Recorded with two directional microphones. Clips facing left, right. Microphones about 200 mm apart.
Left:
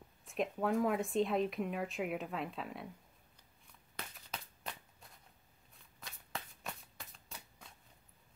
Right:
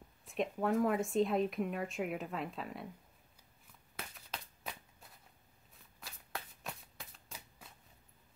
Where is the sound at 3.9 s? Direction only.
Centre (ahead or behind).